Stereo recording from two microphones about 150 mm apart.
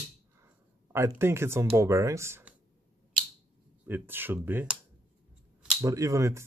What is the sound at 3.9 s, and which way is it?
Speech, 15° right (ahead or behind).